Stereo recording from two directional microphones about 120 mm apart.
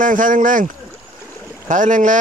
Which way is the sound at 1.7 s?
90° right.